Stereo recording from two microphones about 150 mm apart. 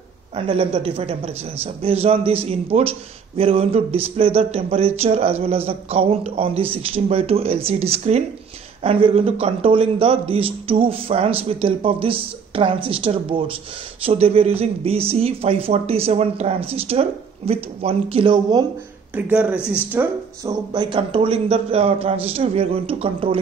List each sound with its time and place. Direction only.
0.4 s a man's voice: 40° right (ahead or behind)
19.1 s speech: 10° right (ahead or behind)
20.4 s a man's voice: 30° right (ahead or behind)